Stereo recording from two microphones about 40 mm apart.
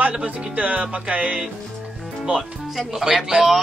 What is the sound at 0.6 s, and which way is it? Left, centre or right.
Music, right.